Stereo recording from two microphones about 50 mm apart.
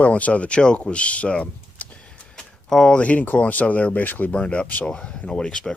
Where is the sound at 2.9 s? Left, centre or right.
Left.